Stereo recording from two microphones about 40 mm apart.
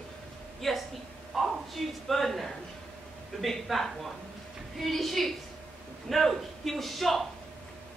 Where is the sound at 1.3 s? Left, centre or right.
Centre.